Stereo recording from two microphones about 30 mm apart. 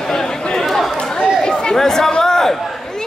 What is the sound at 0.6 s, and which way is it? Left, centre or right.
Chatter, centre.